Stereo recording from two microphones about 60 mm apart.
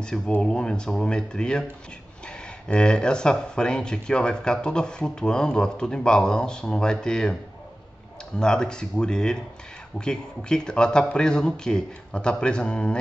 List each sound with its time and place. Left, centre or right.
0.4 s speech: centre
8.4 s speech: centre